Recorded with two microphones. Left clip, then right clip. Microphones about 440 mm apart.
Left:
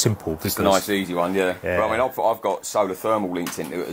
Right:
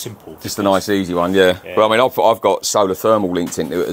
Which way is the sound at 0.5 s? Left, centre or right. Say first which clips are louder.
Right 4 dB; right.